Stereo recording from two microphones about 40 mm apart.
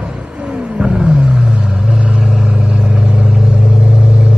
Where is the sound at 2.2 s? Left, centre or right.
Centre.